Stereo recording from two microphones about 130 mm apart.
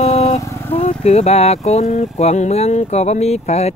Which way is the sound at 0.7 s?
55° left (ahead or behind).